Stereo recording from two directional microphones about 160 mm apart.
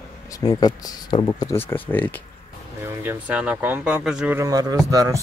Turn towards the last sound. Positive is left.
turn(degrees=-20)  # may be behind; listen again after turning